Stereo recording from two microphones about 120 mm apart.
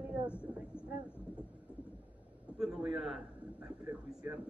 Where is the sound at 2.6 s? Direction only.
5° right (ahead or behind).